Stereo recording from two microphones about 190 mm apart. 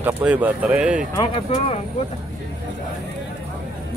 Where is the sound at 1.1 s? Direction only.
20° left (ahead or behind).